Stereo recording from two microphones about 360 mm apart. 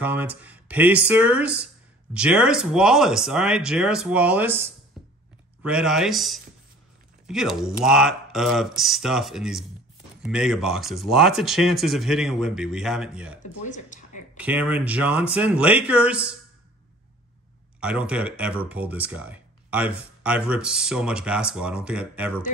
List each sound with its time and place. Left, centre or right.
0.0 s speech: centre
5.0 s music: centre
5.6 s speech: centre
13.6 s speech: left
14.3 s speech: centre
17.7 s speech: centre